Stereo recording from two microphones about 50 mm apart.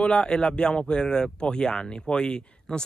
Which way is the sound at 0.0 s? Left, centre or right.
Centre.